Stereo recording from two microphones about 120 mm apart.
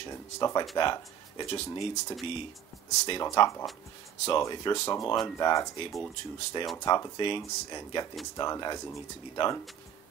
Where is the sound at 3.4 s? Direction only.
45° left (ahead or behind).